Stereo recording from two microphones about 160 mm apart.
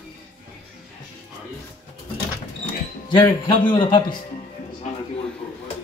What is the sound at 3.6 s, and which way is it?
Speech, 30° left (ahead or behind).